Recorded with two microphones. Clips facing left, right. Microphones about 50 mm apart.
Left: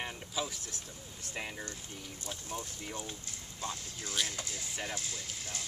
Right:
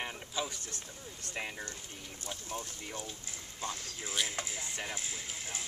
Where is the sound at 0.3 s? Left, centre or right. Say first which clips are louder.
Even; centre.